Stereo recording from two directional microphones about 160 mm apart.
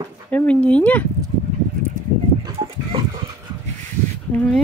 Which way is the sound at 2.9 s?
35° right (ahead or behind).